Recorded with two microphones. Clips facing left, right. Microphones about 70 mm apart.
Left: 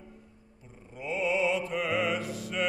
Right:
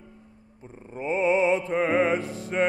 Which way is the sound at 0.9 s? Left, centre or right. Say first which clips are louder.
Right 6 dB; right.